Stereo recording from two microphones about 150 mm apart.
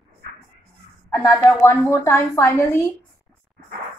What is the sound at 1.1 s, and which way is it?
A woman's voice, 15° left (ahead or behind).